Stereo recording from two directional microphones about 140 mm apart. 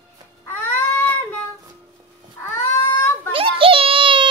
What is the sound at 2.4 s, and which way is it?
Cat, 15° left (ahead or behind).